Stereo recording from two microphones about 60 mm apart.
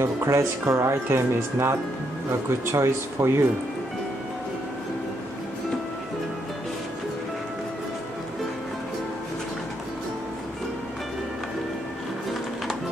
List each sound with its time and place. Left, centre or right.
0.0 s speech: right